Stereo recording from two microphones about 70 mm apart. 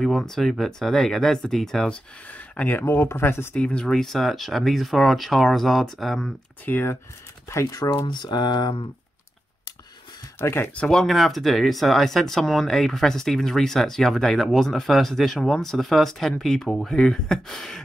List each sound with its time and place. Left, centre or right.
0.0 s speech: centre
2.3 s speech: left
2.8 s speech: left
3.5 s speech: centre
6.6 s speech: left
7.6 s speech: left
10.4 s speech: left
10.7 s speech: centre
11.0 s speech: centre